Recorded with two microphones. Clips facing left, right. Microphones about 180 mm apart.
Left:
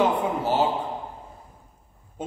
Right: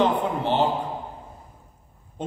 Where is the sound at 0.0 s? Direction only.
5° left (ahead or behind).